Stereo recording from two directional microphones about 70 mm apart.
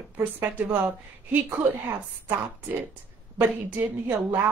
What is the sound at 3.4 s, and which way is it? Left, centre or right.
Speech, right.